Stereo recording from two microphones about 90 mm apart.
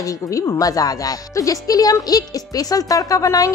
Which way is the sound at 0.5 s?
40° left (ahead or behind).